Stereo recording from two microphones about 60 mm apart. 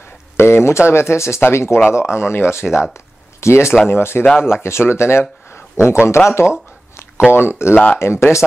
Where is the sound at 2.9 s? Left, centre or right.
Left.